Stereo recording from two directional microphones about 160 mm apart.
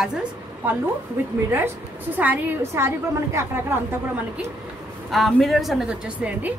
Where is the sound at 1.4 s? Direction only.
15° right (ahead or behind).